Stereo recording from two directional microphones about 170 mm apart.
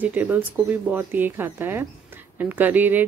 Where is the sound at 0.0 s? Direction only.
10° right (ahead or behind).